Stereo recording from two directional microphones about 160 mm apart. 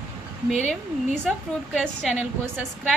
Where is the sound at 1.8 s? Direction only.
10° right (ahead or behind).